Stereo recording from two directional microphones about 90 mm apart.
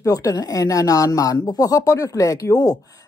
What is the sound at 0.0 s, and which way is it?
Speech, 40° left (ahead or behind).